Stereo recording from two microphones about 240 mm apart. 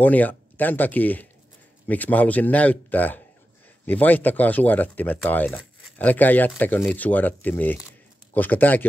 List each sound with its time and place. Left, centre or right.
0.0 s speech: centre